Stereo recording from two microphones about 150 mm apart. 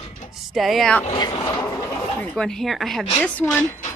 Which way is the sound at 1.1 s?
30° left (ahead or behind).